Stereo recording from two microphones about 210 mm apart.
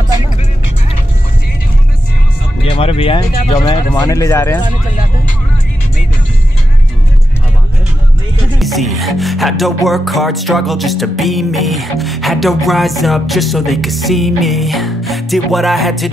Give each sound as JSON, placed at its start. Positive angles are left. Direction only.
{"t": 2.6, "sound": "speech", "side_deg": 25}
{"t": 8.5, "sound": "music", "side_deg": 0}